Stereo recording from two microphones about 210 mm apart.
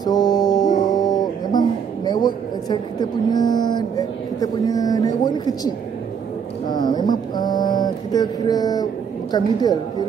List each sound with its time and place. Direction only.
0.0 s a sound: 20° left (ahead or behind)
6.7 s mantra: 20° left (ahead or behind)
9.3 s a woman's voice: 20° left (ahead or behind)